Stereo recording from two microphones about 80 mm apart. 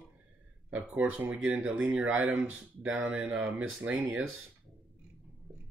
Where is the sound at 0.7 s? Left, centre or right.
Right.